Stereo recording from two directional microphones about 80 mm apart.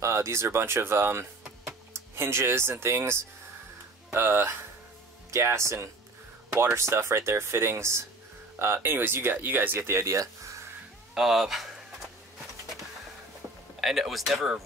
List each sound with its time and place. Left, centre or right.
0.0 s speech: right
10.2 s music: right
11.1 s a sound: centre
13.7 s speech: centre